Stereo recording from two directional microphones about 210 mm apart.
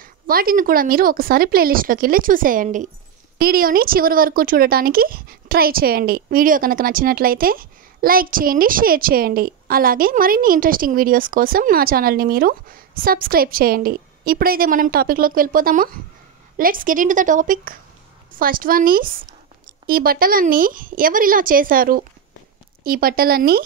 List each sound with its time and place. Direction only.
0.0 s a woman's voice: 45° right (ahead or behind)